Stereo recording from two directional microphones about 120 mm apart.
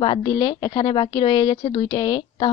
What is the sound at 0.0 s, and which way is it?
A woman's voice, 40° left (ahead or behind).